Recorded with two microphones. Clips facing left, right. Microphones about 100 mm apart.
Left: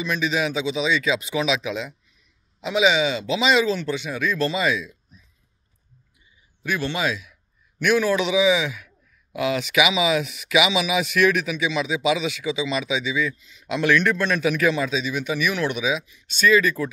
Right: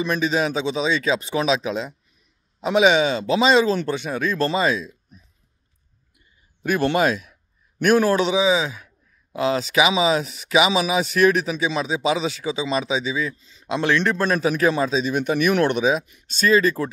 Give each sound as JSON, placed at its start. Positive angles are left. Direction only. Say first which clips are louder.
{"t": 0.0, "sound": "a man's voice", "louder": "right 3 dB", "side_deg": -40}
{"t": 6.1, "sound": "a sound", "louder": "left 1 dB", "side_deg": -50}
{"t": 7.8, "sound": "a man's voice", "louder": "right 3 dB", "side_deg": -40}
{"t": 16.3, "sound": "a man's voice", "louder": "right 1 dB", "side_deg": -35}